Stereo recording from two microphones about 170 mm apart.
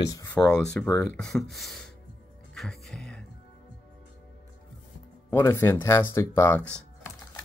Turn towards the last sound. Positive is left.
turn(degrees=10)  # may be behind; listen again after turning